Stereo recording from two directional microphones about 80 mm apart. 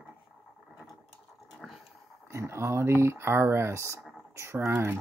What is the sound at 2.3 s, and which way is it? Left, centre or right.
Speech, right.